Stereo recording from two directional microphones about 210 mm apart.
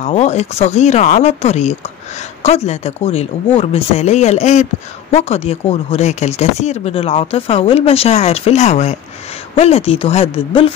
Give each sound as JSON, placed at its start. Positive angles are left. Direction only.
{"t": 0.0, "sound": "speech", "side_deg": 30}